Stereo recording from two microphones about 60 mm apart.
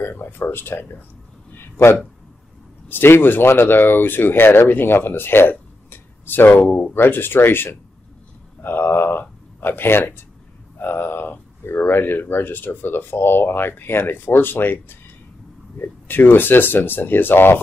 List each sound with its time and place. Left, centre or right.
0.0 s speech: left
1.5 s a sound: left
2.9 s speech: left